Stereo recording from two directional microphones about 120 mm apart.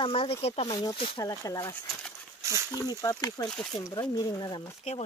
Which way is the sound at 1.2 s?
25° left (ahead or behind).